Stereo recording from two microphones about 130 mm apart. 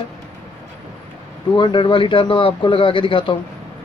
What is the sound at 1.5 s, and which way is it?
A man's voice, 40° left (ahead or behind).